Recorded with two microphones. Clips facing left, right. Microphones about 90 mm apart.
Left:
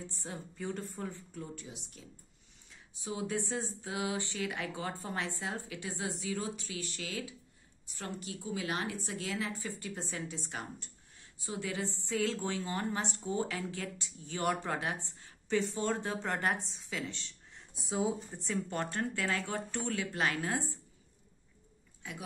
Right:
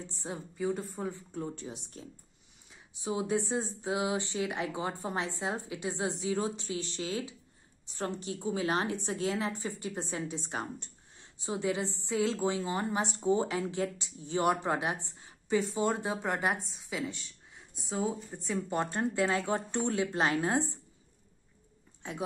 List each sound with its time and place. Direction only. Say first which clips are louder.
0.0 s a woman's voice: right 4 dB; 20° right (ahead or behind)
0.6 s speech: right 6 dB; 5° right (ahead or behind)
1.3 s speech: right 6 dB; 30° right (ahead or behind)
2.7 s a woman's voice: right 6 dB; 20° right (ahead or behind); by 18.6 s centre (ahead or behind)
18.7 s a woman's voice: right 4 dB; 20° right (ahead or behind)
22.0 s a woman's voice: right 5 dB; 30° right (ahead or behind)